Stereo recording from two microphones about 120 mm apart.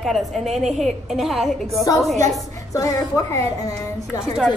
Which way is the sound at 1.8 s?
30° left (ahead or behind).